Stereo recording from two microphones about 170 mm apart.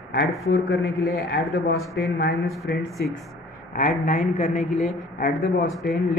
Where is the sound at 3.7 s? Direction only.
50° left (ahead or behind).